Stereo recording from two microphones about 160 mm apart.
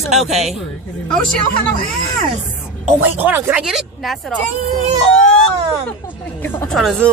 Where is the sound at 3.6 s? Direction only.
Centre (ahead or behind).